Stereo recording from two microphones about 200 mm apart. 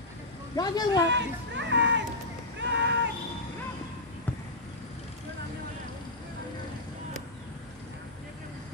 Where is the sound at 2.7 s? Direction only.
60° right (ahead or behind).